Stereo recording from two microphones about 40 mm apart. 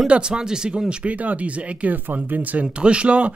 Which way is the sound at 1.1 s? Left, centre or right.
Right.